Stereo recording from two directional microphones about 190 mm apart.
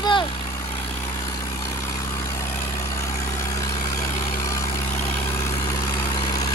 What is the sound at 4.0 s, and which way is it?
Vehicle, 15° left (ahead or behind).